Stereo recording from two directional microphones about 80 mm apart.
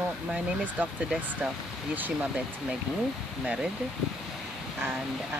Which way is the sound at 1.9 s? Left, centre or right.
Right.